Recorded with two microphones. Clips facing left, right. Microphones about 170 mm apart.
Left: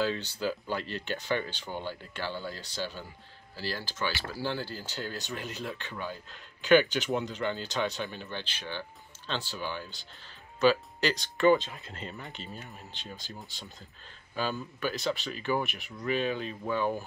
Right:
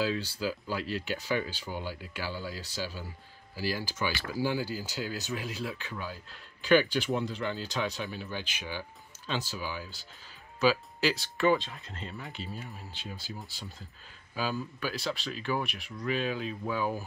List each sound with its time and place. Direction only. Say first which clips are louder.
0.0 s speech: left 1 dB; 5° right (ahead or behind)